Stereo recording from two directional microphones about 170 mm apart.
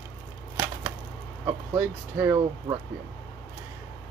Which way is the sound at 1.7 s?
10° right (ahead or behind).